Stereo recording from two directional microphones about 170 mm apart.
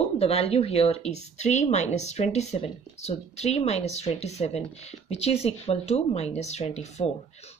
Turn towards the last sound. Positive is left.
turn(degrees=40)  # may be behind; listen again after turning